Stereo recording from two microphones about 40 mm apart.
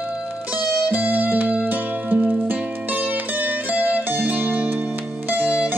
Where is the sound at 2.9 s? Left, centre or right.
Right.